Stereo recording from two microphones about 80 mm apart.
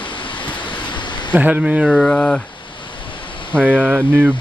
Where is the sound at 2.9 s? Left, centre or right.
Left.